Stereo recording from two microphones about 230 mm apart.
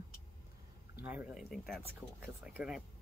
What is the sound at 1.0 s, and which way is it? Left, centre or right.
Speech, centre.